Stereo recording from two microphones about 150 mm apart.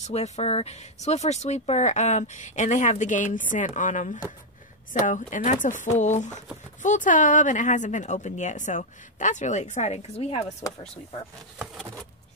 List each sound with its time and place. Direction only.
0.0 s speech: 45° left (ahead or behind)
10.6 s speech: 20° left (ahead or behind)
11.5 s patter: 5° right (ahead or behind)